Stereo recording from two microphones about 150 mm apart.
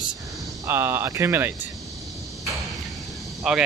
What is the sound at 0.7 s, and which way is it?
Speech, 15° right (ahead or behind).